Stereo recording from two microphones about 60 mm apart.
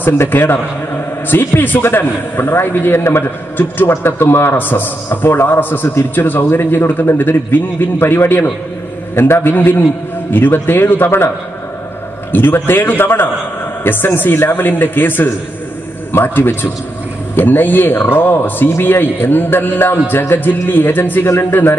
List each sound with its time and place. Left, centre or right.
0.0 s a man's voice: left
12.3 s a man's voice: left